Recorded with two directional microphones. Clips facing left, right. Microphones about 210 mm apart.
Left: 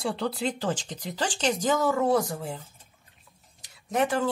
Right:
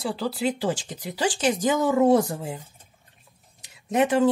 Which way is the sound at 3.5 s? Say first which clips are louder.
Right 4 dB; 20° right (ahead or behind).